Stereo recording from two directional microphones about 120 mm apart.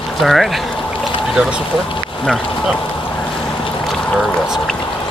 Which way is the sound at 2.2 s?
Centre (ahead or behind).